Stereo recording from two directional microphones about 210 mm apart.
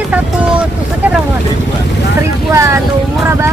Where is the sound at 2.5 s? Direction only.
15° right (ahead or behind).